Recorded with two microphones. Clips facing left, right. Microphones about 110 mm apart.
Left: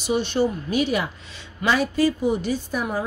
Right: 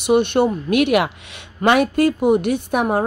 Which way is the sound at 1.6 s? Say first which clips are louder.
Right 5 dB; 60° right (ahead or behind).